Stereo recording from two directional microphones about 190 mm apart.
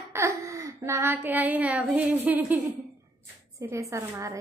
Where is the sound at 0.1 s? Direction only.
15° right (ahead or behind).